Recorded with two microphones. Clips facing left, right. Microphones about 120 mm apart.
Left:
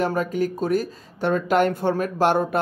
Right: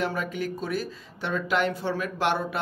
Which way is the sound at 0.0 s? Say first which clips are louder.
Left 6 dB; 40° left (ahead or behind).